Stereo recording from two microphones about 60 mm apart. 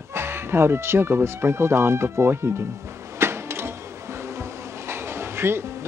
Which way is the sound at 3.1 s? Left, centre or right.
Right.